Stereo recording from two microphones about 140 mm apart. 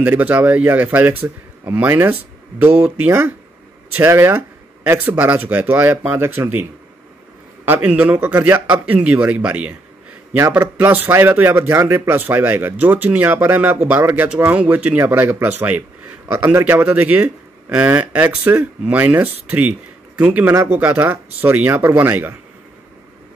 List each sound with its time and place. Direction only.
0.0 s a man's voice: 10° right (ahead or behind)
7.6 s a man's voice: 15° right (ahead or behind)